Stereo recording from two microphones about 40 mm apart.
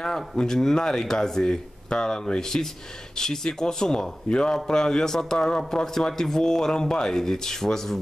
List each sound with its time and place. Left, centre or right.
0.4 s speech: centre